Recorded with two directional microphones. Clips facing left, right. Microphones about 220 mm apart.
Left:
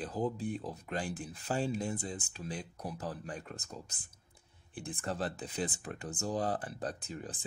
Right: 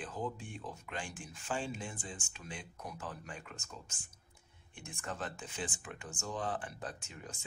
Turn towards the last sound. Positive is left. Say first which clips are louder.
# left 7 dB
turn(degrees=35)  # may be behind; listen again after turning